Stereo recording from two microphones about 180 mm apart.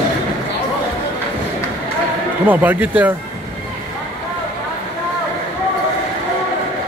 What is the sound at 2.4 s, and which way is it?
Speech, 10° right (ahead or behind).